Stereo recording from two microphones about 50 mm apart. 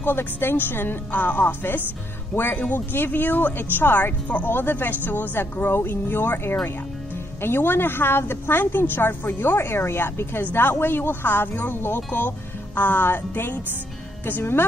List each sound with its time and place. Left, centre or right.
0.0 s speech: left
4.5 s speech: left